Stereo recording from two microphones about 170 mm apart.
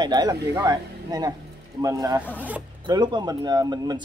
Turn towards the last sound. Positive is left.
turn(degrees=-25)  # may be behind; listen again after turning